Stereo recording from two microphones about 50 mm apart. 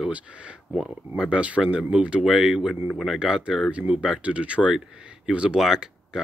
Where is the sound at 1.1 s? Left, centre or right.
Centre.